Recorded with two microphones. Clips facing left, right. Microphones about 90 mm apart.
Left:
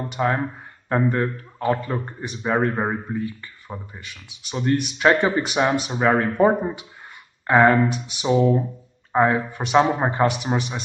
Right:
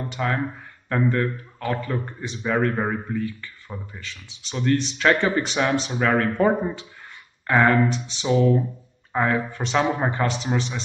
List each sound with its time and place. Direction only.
0.1 s speech: 25° left (ahead or behind)